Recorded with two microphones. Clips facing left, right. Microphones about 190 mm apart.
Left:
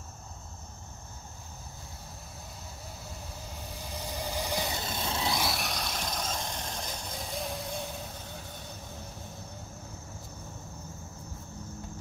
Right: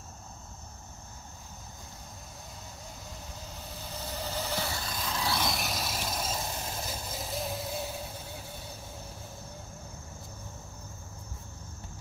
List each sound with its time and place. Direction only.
3.9 s vehicle: 15° left (ahead or behind)
5.4 s vehicle: centre (ahead or behind)